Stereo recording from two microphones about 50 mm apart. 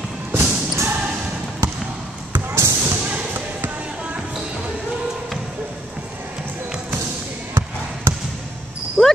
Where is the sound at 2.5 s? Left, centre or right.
Right.